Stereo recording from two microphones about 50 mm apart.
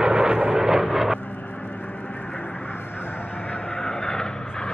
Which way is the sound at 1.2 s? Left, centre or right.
Left.